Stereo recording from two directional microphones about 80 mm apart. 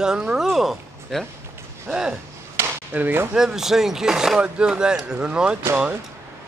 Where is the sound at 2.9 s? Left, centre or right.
Right.